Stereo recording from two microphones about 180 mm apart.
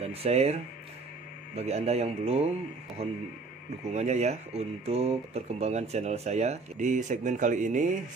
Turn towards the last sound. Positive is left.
turn(degrees=-45)  # may be behind; listen again after turning